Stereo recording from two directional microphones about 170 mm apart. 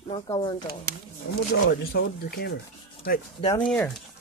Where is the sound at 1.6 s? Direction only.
65° left (ahead or behind).